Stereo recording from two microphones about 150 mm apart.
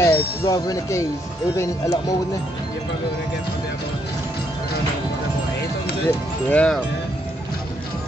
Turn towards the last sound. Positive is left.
turn(degrees=10)  # may be behind; listen again after turning